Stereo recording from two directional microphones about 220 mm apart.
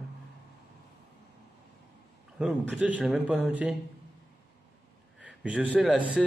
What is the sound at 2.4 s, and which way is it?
A man's voice, 5° right (ahead or behind).